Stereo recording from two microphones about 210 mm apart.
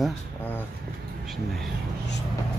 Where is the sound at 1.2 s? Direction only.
Centre (ahead or behind).